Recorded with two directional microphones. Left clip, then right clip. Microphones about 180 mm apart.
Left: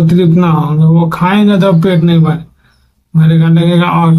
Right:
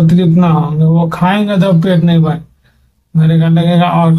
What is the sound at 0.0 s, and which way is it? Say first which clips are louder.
Speech: left 2 dB; 10° left (ahead or behind).